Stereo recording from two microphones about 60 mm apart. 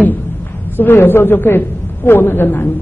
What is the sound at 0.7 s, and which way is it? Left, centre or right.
A woman's voice, left.